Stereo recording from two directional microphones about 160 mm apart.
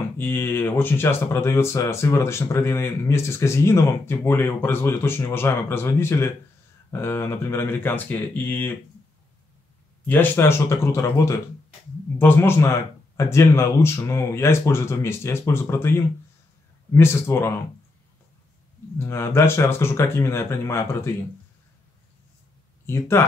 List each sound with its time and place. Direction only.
0.2 s speech: 15° left (ahead or behind)
10.0 s speech: 10° left (ahead or behind)
18.9 s speech: 15° left (ahead or behind)
22.8 s speech: 15° left (ahead or behind)